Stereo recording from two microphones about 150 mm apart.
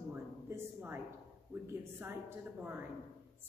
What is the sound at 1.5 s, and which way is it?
A woman's voice, 15° right (ahead or behind).